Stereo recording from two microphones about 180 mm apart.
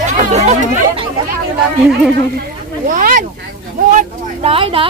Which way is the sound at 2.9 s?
45° right (ahead or behind).